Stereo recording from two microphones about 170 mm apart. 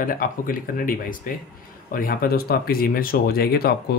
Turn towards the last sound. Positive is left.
turn(degrees=65)  # may be behind; listen again after turning